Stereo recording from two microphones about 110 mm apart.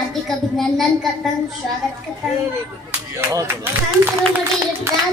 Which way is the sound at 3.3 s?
30° right (ahead or behind).